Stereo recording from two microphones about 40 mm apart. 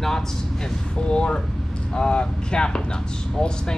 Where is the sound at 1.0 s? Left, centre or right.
Left.